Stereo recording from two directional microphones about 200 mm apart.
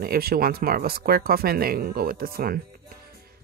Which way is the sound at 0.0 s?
50° right (ahead or behind).